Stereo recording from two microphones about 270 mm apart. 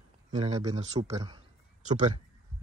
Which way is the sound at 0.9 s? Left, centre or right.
Right.